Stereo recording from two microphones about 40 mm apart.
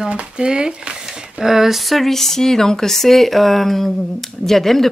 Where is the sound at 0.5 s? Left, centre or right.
Right.